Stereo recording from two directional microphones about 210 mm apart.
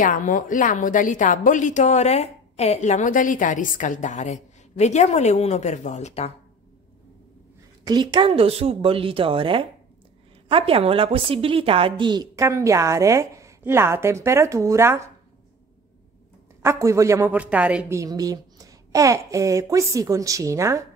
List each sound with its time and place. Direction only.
0.0 s a woman's voice: 40° left (ahead or behind)
7.8 s a woman's voice: 20° right (ahead or behind)
16.6 s a woman's voice: 15° right (ahead or behind)